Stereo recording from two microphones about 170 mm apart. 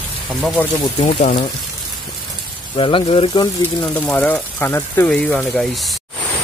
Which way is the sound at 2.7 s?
30° left (ahead or behind).